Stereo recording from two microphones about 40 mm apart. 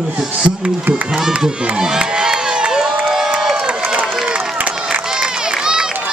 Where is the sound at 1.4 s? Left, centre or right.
Right.